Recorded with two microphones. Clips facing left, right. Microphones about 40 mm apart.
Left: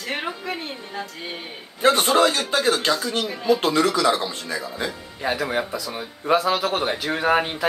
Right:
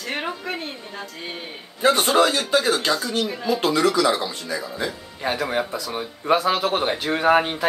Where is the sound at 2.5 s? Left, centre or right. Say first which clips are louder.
Right 1 dB; left.